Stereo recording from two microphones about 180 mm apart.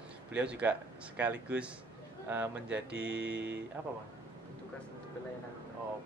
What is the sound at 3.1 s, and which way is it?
Mantra, 65° right (ahead or behind).